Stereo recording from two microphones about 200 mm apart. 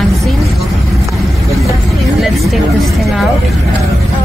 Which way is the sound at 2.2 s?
Centre (ahead or behind).